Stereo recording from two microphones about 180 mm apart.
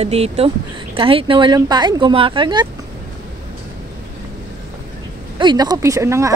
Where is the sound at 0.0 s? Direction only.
35° right (ahead or behind).